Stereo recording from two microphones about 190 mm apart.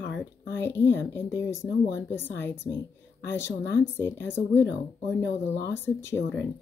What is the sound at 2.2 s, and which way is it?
Speech, 65° left (ahead or behind).